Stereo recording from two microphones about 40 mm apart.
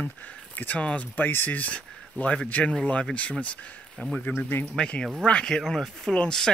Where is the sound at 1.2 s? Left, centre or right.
Left.